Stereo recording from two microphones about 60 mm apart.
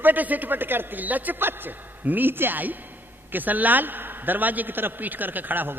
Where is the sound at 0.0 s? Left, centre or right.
Right.